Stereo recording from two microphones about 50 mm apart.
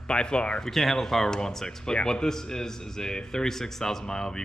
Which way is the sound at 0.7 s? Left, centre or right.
Centre.